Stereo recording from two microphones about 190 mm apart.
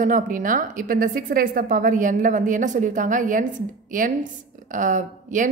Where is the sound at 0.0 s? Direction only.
45° right (ahead or behind).